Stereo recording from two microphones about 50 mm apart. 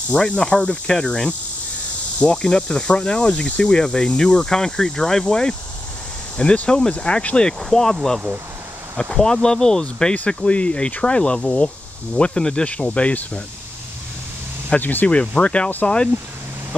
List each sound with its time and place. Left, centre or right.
0.1 s cricket: centre
6.3 s speech: left; by 8.2 s centre
9.1 s cricket: centre
10.1 s speech: left
12.2 s cricket: centre
12.6 s speech: left
14.8 s speech: left
15.0 s speech: left